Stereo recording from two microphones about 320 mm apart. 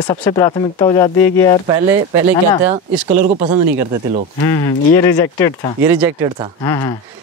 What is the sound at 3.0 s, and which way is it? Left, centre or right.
Speech, right.